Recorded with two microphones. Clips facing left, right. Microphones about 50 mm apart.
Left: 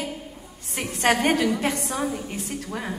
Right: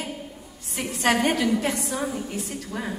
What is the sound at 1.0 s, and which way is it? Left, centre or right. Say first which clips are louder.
Speech: left 1 dB; left.